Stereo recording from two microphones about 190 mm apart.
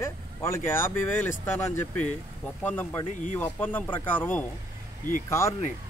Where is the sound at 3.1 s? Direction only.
40° left (ahead or behind).